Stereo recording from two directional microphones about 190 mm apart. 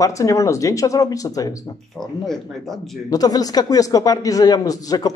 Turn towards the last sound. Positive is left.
turn(degrees=20)  # may be behind; listen again after turning